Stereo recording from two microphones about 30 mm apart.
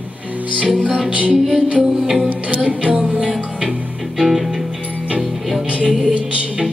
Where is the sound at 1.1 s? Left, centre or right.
Right.